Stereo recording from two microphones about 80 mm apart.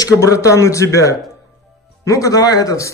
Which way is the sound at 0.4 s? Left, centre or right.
Left.